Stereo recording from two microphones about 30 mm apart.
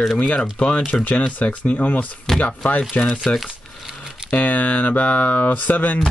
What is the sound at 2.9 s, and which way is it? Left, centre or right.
Speech, left.